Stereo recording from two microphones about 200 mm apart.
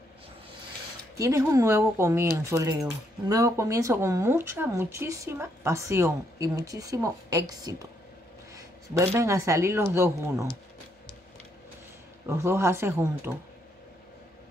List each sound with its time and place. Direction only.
1.1 s speech: 15° right (ahead or behind)
12.3 s speech: 15° right (ahead or behind)